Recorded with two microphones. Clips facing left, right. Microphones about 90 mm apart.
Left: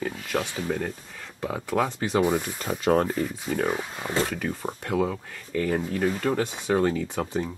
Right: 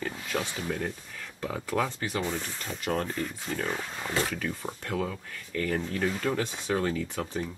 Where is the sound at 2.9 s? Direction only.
35° left (ahead or behind).